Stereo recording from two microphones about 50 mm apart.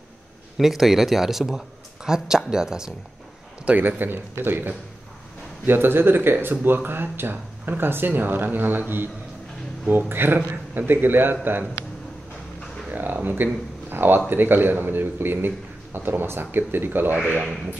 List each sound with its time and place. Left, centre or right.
0.6 s speech: centre
3.6 s a man's voice: right
12.9 s speech: right